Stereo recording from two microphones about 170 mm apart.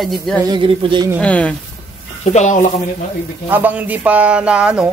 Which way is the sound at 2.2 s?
40° left (ahead or behind).